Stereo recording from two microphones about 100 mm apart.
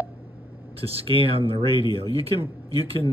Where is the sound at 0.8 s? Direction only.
75° right (ahead or behind).